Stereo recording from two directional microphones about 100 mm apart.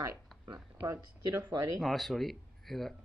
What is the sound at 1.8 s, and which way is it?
Speech, centre (ahead or behind).